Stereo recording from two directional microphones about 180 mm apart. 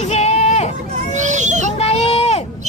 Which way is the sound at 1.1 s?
40° right (ahead or behind).